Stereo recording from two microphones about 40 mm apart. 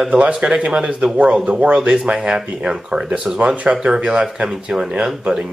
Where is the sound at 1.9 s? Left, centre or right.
Centre.